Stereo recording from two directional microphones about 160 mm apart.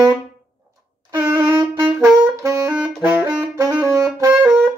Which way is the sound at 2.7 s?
Centre (ahead or behind).